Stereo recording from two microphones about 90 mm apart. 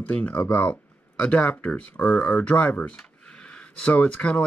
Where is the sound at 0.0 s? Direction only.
15° left (ahead or behind).